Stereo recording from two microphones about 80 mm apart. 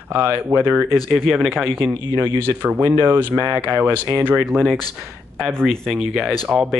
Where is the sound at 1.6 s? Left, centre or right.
Right.